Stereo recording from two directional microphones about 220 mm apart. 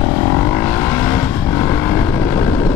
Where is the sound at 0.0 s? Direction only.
10° left (ahead or behind).